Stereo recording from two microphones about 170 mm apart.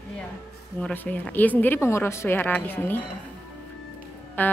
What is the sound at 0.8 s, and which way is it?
A woman's voice, 10° left (ahead or behind).